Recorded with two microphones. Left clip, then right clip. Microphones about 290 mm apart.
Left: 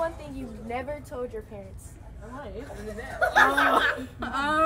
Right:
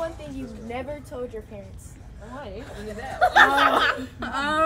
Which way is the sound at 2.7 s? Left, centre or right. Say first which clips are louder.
Right 5 dB; centre.